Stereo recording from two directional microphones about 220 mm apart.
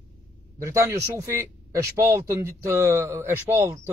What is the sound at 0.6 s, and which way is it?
Speech, 15° right (ahead or behind).